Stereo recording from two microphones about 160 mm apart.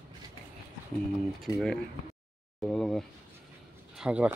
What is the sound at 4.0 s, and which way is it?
Speech, 5° right (ahead or behind).